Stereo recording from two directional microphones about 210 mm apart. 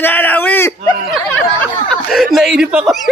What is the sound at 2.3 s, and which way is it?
Speech, centre (ahead or behind).